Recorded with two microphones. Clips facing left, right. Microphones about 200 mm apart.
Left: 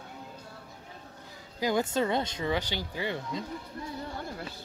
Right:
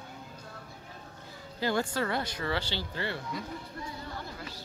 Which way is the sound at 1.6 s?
20° left (ahead or behind).